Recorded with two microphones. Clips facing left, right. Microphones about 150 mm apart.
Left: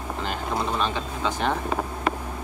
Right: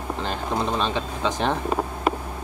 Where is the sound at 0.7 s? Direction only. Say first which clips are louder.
Right 1 dB; 25° right (ahead or behind).